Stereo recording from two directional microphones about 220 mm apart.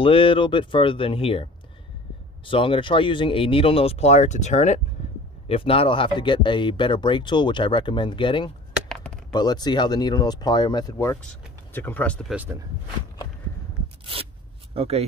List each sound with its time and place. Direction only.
0.0 s speech: 25° left (ahead or behind)
8.8 s chopping: 5° left (ahead or behind)
9.3 s speech: 20° left (ahead or behind); by 12.4 s centre (ahead or behind)
14.7 s speech: 25° right (ahead or behind)